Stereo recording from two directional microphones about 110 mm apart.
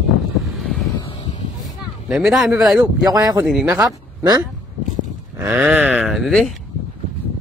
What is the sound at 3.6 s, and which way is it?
Speech, 15° right (ahead or behind).